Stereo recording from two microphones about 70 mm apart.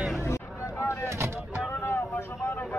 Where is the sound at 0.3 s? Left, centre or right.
Left.